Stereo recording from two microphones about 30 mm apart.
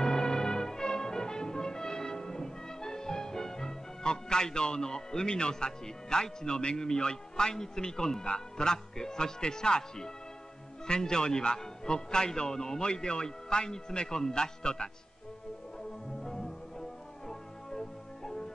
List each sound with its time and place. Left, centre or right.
0.0 s music: left
10.9 s a man's voice: left
16.2 s music: centre